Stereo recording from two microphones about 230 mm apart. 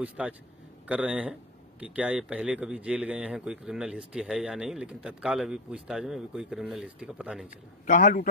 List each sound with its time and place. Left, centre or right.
0.0 s speech: centre
7.8 s speech: left